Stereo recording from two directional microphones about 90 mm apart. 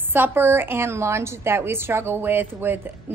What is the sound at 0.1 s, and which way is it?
A woman's voice, 25° right (ahead or behind).